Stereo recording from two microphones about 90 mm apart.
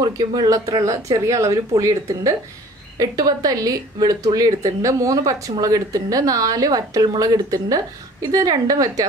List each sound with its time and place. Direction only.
0.0 s speech: 50° right (ahead or behind)